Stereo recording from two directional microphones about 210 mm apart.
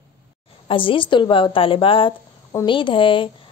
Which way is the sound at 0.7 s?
25° left (ahead or behind).